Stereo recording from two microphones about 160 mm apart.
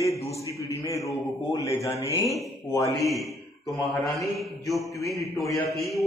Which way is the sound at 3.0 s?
Centre (ahead or behind).